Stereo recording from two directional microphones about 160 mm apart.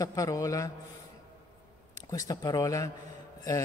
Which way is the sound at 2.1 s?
20° left (ahead or behind).